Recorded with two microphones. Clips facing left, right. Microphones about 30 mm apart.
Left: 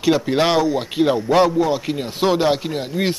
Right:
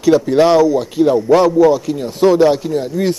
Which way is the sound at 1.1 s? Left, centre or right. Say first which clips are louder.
Right 4 dB; centre.